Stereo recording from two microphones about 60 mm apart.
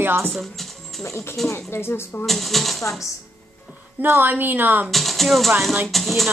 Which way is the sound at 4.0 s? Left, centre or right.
Right.